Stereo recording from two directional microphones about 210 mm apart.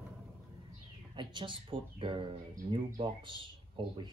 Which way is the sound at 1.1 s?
20° right (ahead or behind).